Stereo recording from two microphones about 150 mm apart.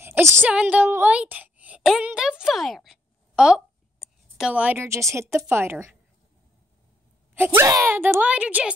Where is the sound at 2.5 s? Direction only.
Centre (ahead or behind); by 5.2 s 20° right (ahead or behind).